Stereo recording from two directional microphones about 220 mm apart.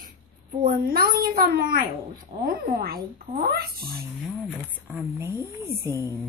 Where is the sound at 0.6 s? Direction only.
40° right (ahead or behind).